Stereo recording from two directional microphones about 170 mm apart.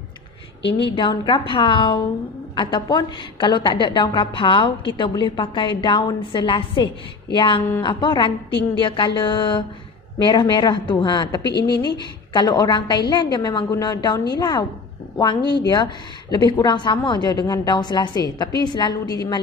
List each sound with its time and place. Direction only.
0.7 s a woman's voice: 30° left (ahead or behind)